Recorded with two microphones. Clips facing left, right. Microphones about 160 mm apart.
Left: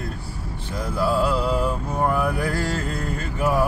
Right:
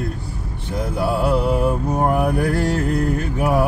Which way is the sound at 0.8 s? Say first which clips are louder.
Right 1 dB; 60° right (ahead or behind).